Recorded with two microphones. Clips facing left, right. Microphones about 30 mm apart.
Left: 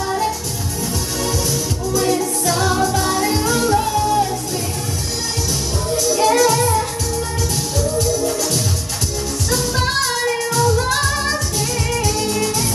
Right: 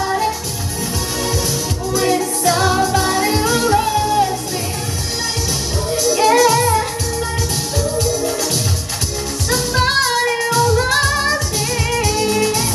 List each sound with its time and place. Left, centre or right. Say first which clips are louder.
0.0 s music: right 2 dB; centre
1.9 s music: right 1 dB; centre
5.9 s music: right 2 dB; centre
9.5 s music: right 3 dB; centre